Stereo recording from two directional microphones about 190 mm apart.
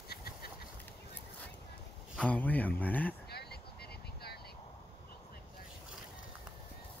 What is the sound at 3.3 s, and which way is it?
Vehicle, 60° left (ahead or behind).